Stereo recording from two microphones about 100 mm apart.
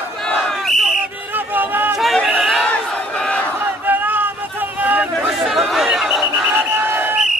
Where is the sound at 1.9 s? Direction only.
Centre (ahead or behind).